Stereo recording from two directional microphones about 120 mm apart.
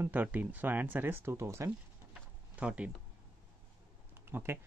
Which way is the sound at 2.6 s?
10° right (ahead or behind).